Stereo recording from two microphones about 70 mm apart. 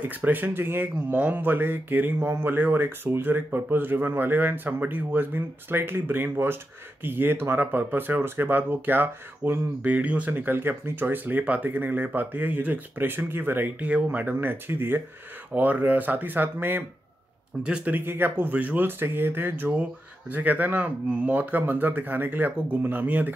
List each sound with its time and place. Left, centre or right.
0.0 s speech: right
17.6 s speech: centre
17.9 s speech: right